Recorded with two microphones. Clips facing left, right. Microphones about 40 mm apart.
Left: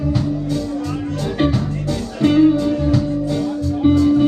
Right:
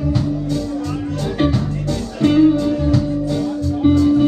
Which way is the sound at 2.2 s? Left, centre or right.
Centre.